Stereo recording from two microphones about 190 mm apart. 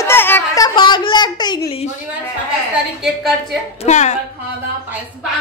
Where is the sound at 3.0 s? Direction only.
Centre (ahead or behind).